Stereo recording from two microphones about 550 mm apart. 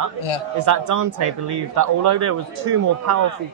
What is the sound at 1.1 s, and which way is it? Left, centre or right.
A man's voice, right.